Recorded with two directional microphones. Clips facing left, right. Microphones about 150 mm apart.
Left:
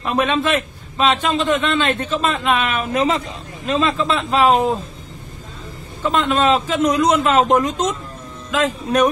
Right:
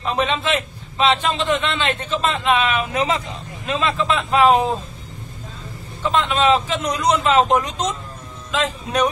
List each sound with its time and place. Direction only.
0.2 s a man's voice: 50° left (ahead or behind)
6.0 s a man's voice: 45° left (ahead or behind)